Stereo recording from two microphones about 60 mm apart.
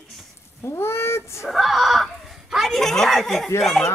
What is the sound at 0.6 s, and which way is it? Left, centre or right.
Speech, left.